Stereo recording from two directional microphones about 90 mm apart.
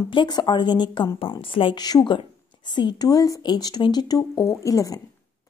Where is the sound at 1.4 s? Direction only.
75° left (ahead or behind).